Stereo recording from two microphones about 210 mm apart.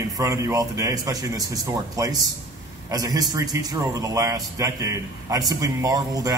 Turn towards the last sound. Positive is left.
turn(degrees=-15)  # may be behind; listen again after turning